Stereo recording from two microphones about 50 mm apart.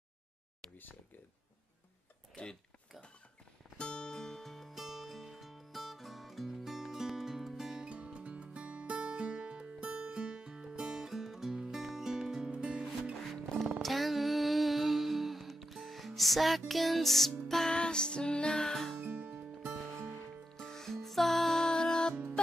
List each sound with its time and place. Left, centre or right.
2.4 s speech: left
3.7 s music: centre
7.7 s music: right
13.8 s music: centre
17.6 s music: centre
18.9 s music: right
20.1 s music: centre